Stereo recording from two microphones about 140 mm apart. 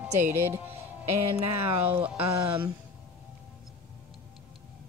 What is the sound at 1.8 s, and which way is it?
Speech, 15° right (ahead or behind).